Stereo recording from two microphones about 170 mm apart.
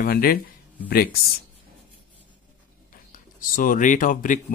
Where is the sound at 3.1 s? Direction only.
55° left (ahead or behind).